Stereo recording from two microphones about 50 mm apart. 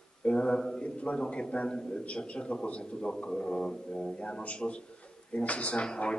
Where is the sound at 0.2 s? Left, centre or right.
Left.